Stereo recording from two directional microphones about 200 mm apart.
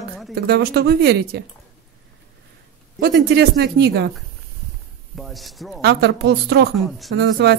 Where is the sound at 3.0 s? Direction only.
55° right (ahead or behind).